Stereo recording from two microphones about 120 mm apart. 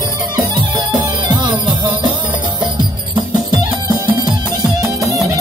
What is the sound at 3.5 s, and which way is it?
Music, 35° right (ahead or behind).